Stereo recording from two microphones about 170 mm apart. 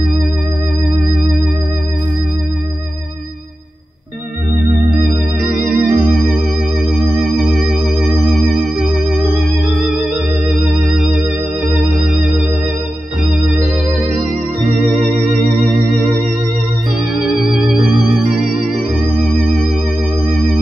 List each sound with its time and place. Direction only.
5.0 s music: 50° right (ahead or behind)
6.8 s music: centre (ahead or behind)
10.7 s music: centre (ahead or behind)
15.0 s music: centre (ahead or behind)
15.6 s organ: 60° right (ahead or behind)
17.1 s music: centre (ahead or behind)
18.6 s music: 50° right (ahead or behind)
19.2 s music: centre (ahead or behind)